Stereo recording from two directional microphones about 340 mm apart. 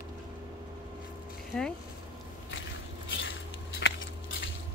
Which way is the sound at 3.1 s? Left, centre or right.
Left.